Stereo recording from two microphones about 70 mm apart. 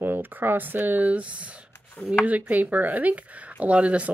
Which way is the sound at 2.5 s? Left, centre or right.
Right.